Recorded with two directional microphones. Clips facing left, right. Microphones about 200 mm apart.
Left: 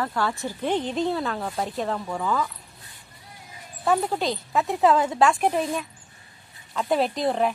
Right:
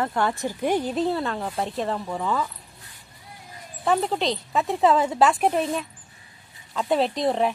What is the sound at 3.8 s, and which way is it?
Speech, centre (ahead or behind).